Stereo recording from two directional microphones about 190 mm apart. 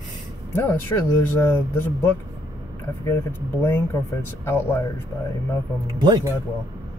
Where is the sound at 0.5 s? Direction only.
10° left (ahead or behind).